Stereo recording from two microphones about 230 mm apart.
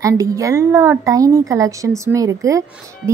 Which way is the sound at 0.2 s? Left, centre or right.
Centre.